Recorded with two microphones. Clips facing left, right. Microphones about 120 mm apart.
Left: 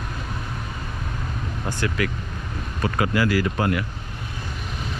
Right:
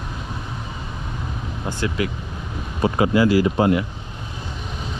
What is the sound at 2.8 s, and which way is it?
Speech, 20° right (ahead or behind).